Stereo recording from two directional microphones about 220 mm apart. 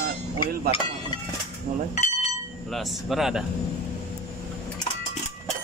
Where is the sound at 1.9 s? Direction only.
30° left (ahead or behind).